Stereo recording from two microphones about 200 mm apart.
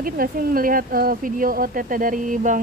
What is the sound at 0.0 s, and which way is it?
Speech, 45° right (ahead or behind).